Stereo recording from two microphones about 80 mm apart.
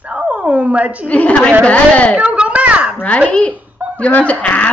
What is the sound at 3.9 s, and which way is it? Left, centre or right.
Speech, centre.